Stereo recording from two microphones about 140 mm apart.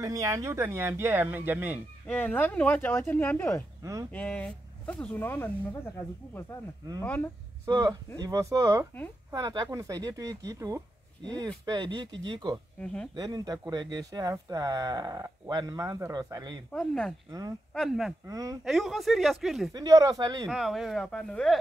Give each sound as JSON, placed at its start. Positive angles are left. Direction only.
{"t": 0.0, "sound": "speech", "side_deg": -25}
{"t": 2.0, "sound": "speech", "side_deg": 10}
{"t": 3.8, "sound": "speech", "side_deg": -25}
{"t": 4.1, "sound": "speech", "side_deg": 10}
{"t": 7.0, "sound": "speech", "side_deg": 15}
{"t": 7.6, "sound": "speech", "side_deg": -25}
{"t": 12.8, "sound": "speech", "side_deg": 5}
{"t": 13.1, "sound": "speech", "side_deg": -30}
{"t": 16.7, "sound": "speech", "side_deg": 5}
{"t": 18.2, "sound": "speech", "side_deg": -25}
{"t": 18.6, "sound": "speech", "side_deg": 0}
{"t": 19.7, "sound": "speech", "side_deg": -25}
{"t": 20.4, "sound": "speech", "side_deg": 0}